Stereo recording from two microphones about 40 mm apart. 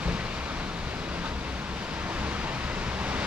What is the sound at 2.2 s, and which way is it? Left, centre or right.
Pink noise, right.